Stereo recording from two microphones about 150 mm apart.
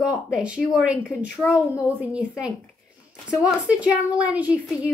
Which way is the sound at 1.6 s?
20° left (ahead or behind).